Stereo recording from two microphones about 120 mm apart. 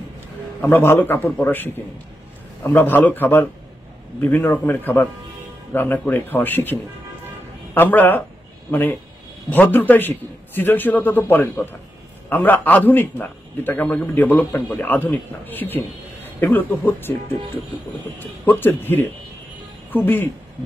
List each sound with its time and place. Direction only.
0.6 s a man's voice: 20° left (ahead or behind)
18.4 s a man's voice: 15° left (ahead or behind)